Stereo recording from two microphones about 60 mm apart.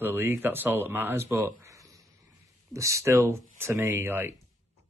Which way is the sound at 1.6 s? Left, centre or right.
Right.